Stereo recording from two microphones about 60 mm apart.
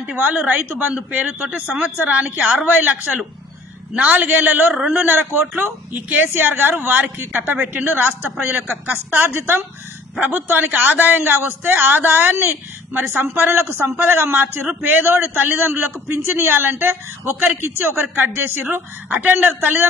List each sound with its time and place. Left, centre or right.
0.2 s a man's voice: right
1.1 s a woman's voice: right
18.1 s a man's voice: right